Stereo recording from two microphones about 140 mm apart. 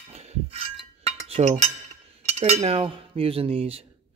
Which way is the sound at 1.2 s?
45° right (ahead or behind).